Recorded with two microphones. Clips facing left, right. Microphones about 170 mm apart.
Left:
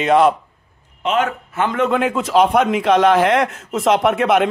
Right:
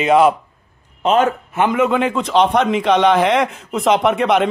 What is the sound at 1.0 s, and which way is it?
Speech, 35° right (ahead or behind).